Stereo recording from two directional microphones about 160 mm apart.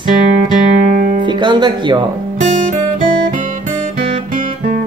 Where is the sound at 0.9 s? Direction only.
60° right (ahead or behind).